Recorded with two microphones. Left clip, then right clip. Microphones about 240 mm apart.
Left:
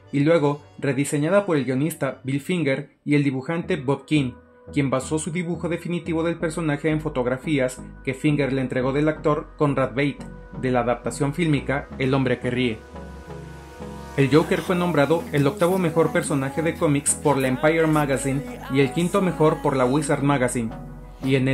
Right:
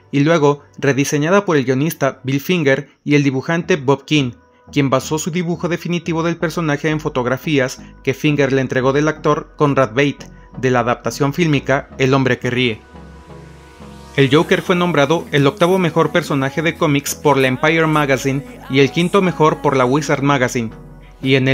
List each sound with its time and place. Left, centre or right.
0.1 s speech: right
14.1 s speech: right
21.2 s speech: centre